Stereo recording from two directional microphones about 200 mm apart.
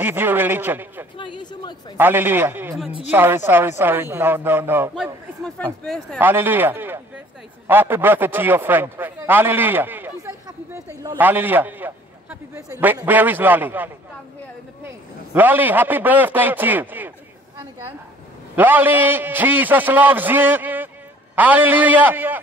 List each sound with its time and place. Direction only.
0.0 s a man's voice: 10° right (ahead or behind)
1.1 s speech: 25° left (ahead or behind)
2.0 s a man's voice: 10° right (ahead or behind)
15.3 s a man's voice: 10° right (ahead or behind)
18.6 s a man's voice: 10° right (ahead or behind)